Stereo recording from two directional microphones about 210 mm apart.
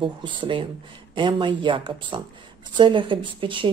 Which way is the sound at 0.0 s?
25° right (ahead or behind).